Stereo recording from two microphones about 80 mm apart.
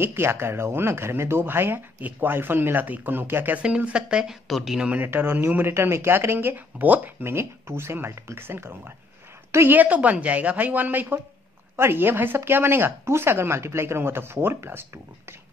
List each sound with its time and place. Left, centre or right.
0.0 s speech: right
3.6 s speech: centre
4.9 s a woman's voice: right
9.8 s speech: centre